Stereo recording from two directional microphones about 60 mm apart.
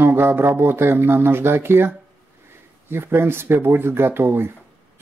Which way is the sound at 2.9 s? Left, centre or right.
Right.